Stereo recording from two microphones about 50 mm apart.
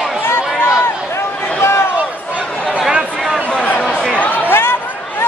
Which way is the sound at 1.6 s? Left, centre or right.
Left.